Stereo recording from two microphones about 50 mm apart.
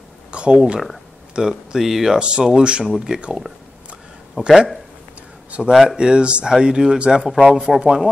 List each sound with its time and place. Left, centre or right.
0.3 s speech: right; by 2.1 s centre
2.1 s speech: centre
2.8 s speech: centre
4.5 s speech: centre